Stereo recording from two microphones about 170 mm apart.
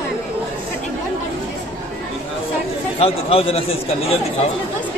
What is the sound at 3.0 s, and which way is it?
Speech, 35° left (ahead or behind).